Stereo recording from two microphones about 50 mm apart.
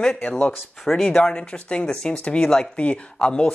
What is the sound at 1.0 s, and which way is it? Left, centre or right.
Speech, centre.